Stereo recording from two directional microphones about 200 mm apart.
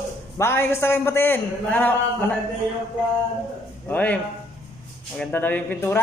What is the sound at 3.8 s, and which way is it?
A man's voice, 5° left (ahead or behind).